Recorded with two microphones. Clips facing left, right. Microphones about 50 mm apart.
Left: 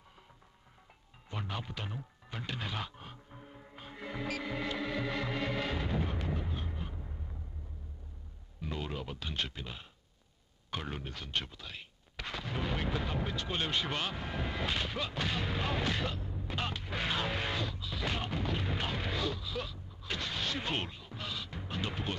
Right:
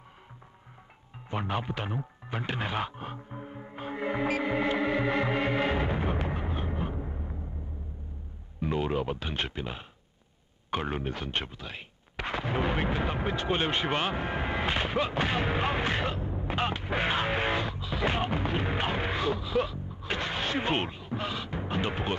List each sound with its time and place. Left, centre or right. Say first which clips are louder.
1.3 s speech: right 9 dB; right
8.5 s speech: right 10 dB; right